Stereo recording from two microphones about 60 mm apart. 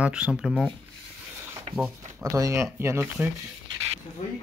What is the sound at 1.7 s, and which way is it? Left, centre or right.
Speech, right.